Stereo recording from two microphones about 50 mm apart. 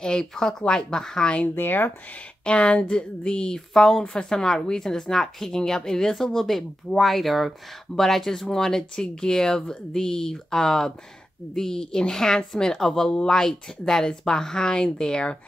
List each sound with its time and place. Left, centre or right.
0.0 s a woman's voice: centre
1.5 s speech: left
2.4 s a woman's voice: left